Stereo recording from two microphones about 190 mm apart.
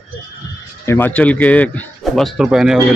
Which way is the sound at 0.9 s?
10° left (ahead or behind).